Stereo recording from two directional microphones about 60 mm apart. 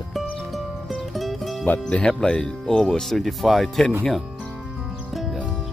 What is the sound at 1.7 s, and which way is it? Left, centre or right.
Speech, left.